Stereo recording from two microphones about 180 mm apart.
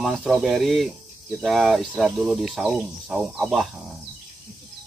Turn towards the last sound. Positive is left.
turn(degrees=0)  # may be behind; listen again after turning